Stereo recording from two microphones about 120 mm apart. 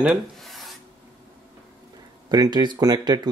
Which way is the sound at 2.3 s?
35° right (ahead or behind).